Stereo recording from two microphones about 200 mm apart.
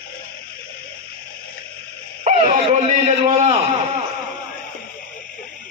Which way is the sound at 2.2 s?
35° right (ahead or behind).